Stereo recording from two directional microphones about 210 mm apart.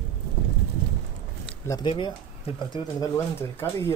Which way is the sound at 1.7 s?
20° left (ahead or behind).